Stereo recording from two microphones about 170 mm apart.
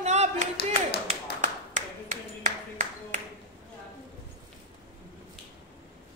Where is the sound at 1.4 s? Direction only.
45° right (ahead or behind).